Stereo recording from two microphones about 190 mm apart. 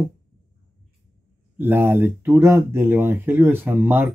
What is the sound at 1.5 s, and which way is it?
Speech, 10° right (ahead or behind).